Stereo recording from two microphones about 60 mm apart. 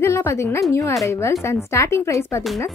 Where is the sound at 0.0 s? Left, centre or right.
Left.